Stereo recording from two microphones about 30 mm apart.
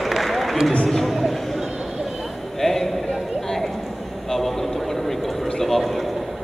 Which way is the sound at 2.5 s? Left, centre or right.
Centre.